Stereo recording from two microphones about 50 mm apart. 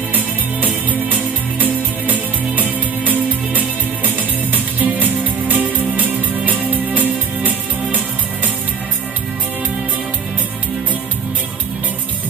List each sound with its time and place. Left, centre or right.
1.6 s music: right